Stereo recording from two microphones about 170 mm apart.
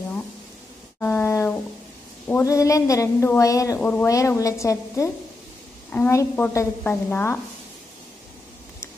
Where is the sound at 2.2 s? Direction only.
15° left (ahead or behind).